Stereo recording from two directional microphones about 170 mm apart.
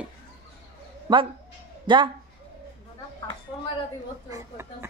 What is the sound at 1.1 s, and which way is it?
Speech, 25° right (ahead or behind).